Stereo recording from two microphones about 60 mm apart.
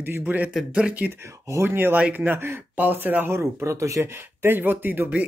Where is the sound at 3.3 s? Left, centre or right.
Right.